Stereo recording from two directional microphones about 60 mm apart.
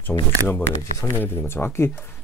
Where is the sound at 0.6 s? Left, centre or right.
Left.